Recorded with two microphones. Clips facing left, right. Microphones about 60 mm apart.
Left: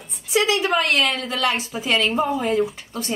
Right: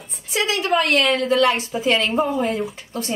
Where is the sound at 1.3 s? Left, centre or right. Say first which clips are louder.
Right 6 dB; right.